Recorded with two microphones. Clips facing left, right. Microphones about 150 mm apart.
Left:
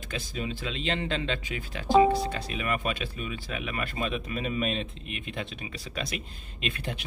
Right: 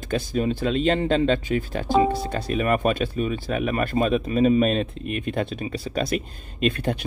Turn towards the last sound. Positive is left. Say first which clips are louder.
# right 11 dB
turn(degrees=-45)  # may be behind; listen again after turning